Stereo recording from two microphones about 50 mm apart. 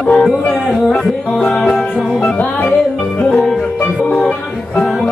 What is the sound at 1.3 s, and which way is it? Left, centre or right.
Music, centre.